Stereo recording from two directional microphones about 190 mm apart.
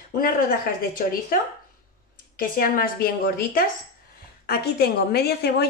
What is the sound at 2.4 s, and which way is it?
A woman's voice, 50° left (ahead or behind).